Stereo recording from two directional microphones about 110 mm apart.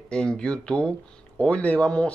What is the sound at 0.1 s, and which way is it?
Speech, 10° left (ahead or behind).